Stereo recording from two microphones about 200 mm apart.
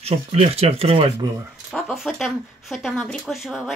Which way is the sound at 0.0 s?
30° right (ahead or behind).